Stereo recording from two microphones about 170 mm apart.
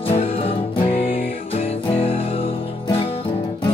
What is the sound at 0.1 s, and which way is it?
Music, 35° left (ahead or behind).